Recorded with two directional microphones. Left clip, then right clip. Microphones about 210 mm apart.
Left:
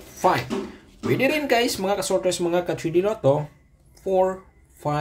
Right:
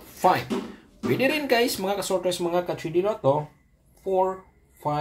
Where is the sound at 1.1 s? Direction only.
5° left (ahead or behind).